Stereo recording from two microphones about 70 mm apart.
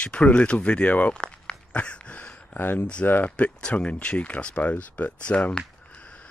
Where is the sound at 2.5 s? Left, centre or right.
Left.